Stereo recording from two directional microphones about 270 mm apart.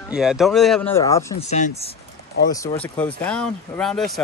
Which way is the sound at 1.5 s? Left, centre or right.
Left.